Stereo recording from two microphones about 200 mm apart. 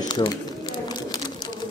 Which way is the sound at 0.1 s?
20° left (ahead or behind).